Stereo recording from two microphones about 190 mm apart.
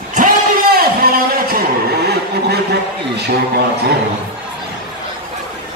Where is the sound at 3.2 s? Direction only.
60° right (ahead or behind).